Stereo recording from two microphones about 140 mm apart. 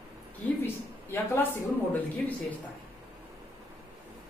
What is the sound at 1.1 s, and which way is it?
Speech, 15° left (ahead or behind).